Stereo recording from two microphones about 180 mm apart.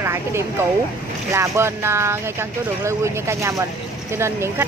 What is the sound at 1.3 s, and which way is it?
Speech, 15° right (ahead or behind).